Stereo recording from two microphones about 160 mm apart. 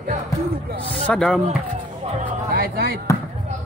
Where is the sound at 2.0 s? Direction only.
50° right (ahead or behind); by 3.0 s 70° right (ahead or behind).